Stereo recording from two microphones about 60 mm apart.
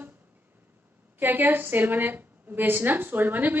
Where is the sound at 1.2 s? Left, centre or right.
Right.